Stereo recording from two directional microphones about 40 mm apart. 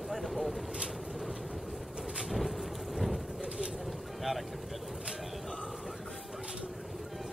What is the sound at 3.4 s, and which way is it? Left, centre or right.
Boat, right.